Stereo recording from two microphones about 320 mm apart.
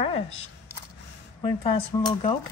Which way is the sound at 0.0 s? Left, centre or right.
Centre.